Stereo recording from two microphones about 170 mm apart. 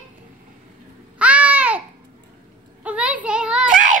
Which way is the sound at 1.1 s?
10° right (ahead or behind).